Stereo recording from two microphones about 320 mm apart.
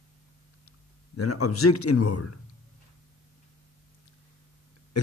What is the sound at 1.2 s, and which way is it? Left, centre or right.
A man's voice, left.